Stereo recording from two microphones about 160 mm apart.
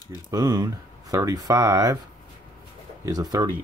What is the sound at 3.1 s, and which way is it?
Speech, 25° right (ahead or behind).